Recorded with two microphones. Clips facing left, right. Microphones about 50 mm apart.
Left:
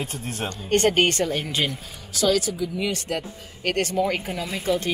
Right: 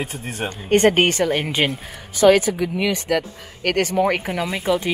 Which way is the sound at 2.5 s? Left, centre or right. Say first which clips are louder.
Right 5 dB; right.